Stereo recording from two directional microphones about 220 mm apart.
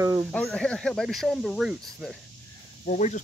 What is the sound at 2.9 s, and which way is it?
Speech, 35° left (ahead or behind).